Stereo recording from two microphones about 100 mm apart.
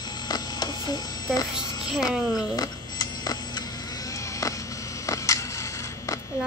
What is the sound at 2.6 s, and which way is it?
Camera, 40° left (ahead or behind).